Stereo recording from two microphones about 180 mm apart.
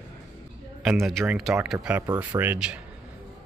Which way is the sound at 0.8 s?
Centre (ahead or behind).